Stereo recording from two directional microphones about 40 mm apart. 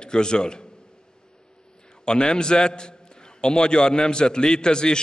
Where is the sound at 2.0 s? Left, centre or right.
Left.